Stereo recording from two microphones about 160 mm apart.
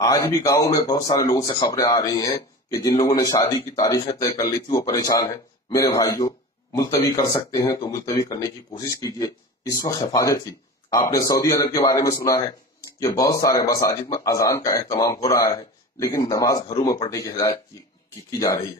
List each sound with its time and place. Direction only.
0.0 s speech: 20° left (ahead or behind)